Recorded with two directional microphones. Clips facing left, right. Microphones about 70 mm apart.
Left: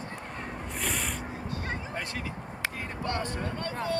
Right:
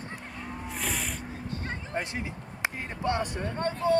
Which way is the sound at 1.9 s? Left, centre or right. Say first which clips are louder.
Right 2 dB; right.